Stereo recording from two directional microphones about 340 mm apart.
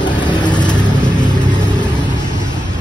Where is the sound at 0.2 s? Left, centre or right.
Centre.